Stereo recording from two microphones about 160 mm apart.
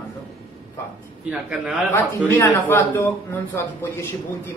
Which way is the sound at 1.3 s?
5° right (ahead or behind).